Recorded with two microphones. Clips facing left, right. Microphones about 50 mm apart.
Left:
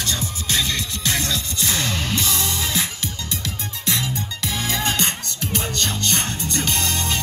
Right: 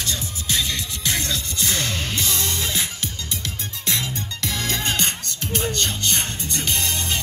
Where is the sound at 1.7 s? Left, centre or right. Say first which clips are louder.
Left 2 dB; left.